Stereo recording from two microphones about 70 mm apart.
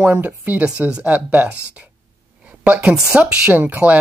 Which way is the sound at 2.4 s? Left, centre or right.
Right.